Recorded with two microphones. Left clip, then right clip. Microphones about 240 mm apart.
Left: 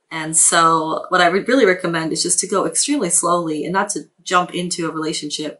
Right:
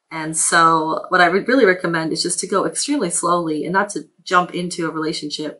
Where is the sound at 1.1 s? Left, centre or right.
Centre.